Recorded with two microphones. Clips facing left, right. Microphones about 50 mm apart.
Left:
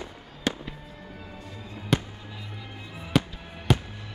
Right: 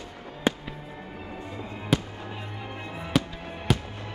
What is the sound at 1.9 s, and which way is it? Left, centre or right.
Fireworks, centre.